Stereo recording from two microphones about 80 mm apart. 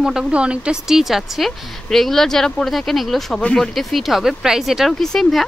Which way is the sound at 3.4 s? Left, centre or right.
Centre.